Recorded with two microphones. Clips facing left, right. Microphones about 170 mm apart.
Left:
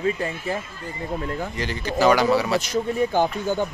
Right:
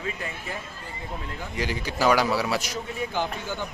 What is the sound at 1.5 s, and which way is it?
Speech, 10° right (ahead or behind).